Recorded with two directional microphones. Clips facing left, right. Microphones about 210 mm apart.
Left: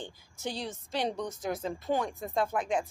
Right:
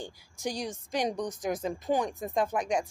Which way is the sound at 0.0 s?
15° right (ahead or behind).